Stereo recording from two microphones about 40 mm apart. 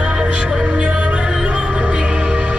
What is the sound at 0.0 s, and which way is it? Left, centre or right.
Music, centre.